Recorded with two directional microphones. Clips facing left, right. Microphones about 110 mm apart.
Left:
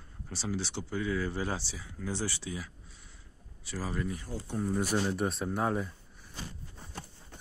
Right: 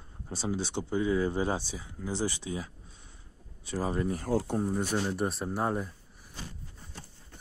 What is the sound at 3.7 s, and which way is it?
Speech, 25° right (ahead or behind).